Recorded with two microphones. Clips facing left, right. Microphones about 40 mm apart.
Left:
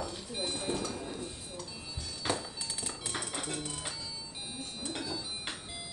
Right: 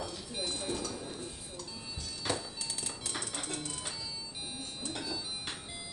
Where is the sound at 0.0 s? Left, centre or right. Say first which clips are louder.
Left 1 dB; centre.